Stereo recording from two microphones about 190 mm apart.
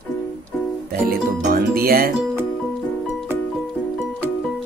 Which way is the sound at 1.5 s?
50° right (ahead or behind).